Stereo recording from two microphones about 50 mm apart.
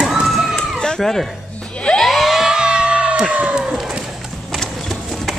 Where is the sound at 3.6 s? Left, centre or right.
Centre.